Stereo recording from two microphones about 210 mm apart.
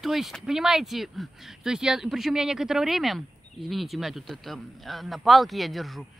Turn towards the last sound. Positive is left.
turn(degrees=0)  # may be behind; listen again after turning